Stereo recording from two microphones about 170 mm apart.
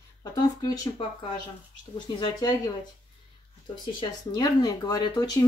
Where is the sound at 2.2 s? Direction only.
25° left (ahead or behind).